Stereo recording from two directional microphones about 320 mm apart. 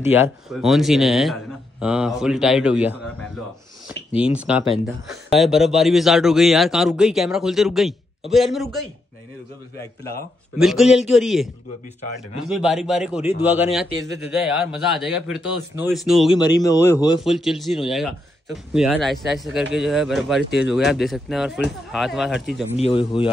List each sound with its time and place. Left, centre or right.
0.5 s a man's voice: centre
4.3 s a man's voice: centre
10.6 s a man's voice: centre
12.4 s a man's voice: centre
16.3 s speech: centre
17.2 s a man's voice: centre
22.8 s speech: centre